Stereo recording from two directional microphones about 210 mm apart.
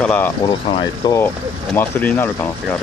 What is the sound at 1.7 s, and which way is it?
Speech, 10° left (ahead or behind).